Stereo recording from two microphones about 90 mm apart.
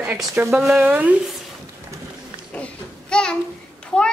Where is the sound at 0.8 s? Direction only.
20° right (ahead or behind).